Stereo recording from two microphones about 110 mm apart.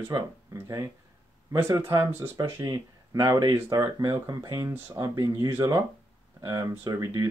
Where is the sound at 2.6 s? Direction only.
35° right (ahead or behind).